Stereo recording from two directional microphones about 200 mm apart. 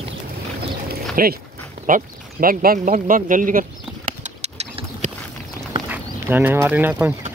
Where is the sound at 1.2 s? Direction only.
45° right (ahead or behind).